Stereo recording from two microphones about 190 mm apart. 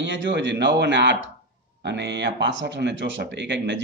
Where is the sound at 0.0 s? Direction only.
70° right (ahead or behind).